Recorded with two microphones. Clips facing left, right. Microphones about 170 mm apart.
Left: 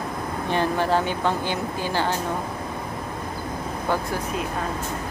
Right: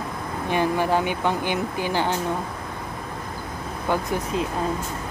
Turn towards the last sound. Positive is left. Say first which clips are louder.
# right 2 dB
turn(degrees=-20)  # may be behind; listen again after turning